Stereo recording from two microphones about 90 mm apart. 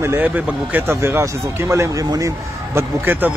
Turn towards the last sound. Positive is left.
turn(degrees=-20)  # may be behind; listen again after turning